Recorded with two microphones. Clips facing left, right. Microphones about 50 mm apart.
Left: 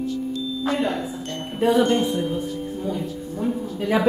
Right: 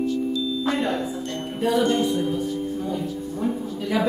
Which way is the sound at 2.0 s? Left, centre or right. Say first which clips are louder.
Even; left.